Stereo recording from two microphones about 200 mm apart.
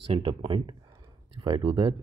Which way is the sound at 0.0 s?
30° right (ahead or behind).